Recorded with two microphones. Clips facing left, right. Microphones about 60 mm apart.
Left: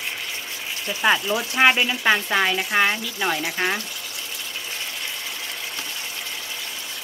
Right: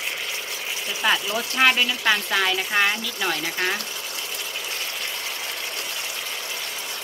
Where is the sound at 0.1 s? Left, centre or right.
Centre.